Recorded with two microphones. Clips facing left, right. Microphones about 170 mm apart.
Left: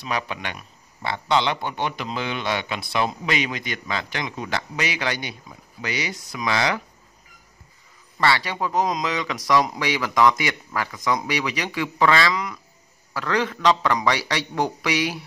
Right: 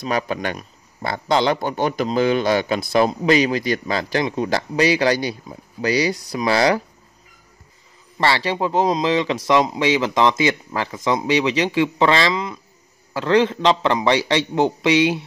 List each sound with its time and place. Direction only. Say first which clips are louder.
0.0 s speech: right 6 dB; 40° right (ahead or behind)
8.2 s speech: right 3 dB; 30° right (ahead or behind)